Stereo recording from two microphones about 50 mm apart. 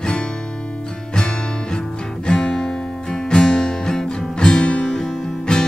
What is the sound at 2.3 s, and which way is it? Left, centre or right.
Music, centre.